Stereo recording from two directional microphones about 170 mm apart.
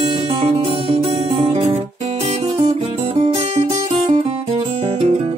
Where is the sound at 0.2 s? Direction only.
30° right (ahead or behind).